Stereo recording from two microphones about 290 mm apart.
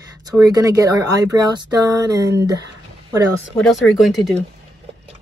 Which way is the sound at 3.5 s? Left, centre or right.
Centre.